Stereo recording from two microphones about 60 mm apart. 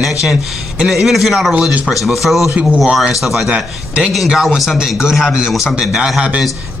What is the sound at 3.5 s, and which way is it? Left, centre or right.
Speech, centre.